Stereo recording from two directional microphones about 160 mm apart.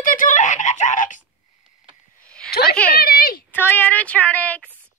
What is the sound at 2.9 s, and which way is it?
Speech, 70° left (ahead or behind).